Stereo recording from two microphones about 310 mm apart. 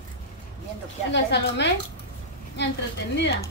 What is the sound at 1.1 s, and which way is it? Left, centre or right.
Speech, left.